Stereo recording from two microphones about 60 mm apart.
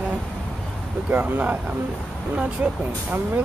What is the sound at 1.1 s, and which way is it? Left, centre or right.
Speech, right.